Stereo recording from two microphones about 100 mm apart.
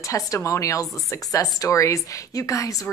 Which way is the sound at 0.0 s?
30° left (ahead or behind).